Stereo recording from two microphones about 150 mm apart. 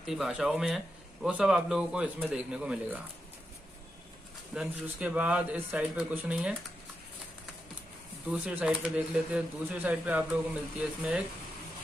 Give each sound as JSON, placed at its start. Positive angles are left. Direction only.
{"t": 0.0, "sound": "speech", "side_deg": 0}
{"t": 4.6, "sound": "speech", "side_deg": -10}
{"t": 8.3, "sound": "speech", "side_deg": -10}